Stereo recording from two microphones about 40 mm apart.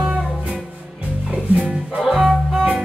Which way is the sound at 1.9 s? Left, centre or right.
Centre.